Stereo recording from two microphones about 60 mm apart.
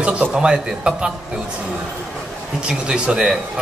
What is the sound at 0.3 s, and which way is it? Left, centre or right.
Speech, centre.